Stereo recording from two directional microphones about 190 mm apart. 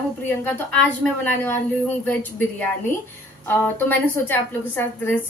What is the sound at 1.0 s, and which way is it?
Speech, 10° left (ahead or behind).